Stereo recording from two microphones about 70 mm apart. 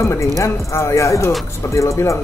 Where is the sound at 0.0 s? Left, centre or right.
Left.